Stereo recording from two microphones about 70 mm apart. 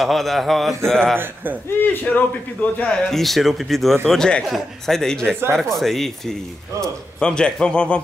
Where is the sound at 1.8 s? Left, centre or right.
Left.